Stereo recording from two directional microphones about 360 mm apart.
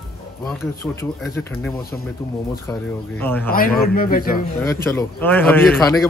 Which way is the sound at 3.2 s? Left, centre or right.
Centre.